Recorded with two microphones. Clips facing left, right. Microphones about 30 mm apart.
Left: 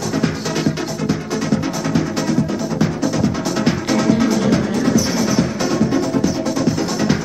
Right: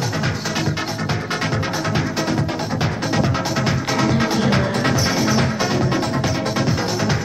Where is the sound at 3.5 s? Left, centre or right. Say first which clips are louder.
Left 3 dB; centre.